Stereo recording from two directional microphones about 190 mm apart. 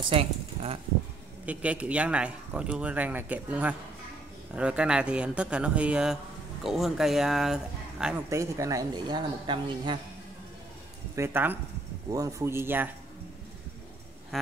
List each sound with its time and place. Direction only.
0.1 s speech: 30° right (ahead or behind)
1.4 s a man's voice: 5° right (ahead or behind)
8.3 s a woman's voice: 15° right (ahead or behind)
11.1 s a man's voice: 10° right (ahead or behind)